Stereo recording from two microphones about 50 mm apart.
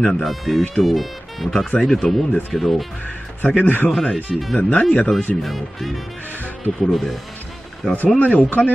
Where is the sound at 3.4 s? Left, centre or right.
Left.